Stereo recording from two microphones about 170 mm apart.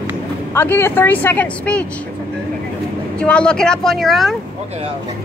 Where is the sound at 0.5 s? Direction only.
15° left (ahead or behind).